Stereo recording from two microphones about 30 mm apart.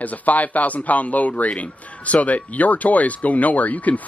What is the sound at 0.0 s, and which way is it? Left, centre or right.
Speech, left.